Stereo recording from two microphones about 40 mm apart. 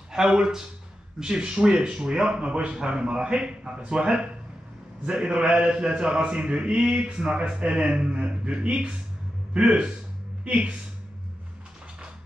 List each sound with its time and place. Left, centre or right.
0.1 s speech: centre